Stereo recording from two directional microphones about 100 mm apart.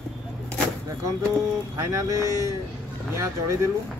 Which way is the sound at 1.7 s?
30° right (ahead or behind).